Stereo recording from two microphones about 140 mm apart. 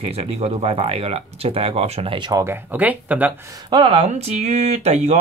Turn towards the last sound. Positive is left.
turn(degrees=-50)  # may be behind; listen again after turning